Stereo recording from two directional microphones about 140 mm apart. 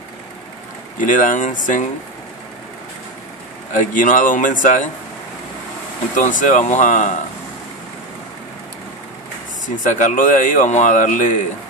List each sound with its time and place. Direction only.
0.9 s speech: 70° left (ahead or behind)
3.7 s speech: 70° left (ahead or behind)
6.1 s speech: 65° left (ahead or behind)
9.8 s speech: 65° left (ahead or behind)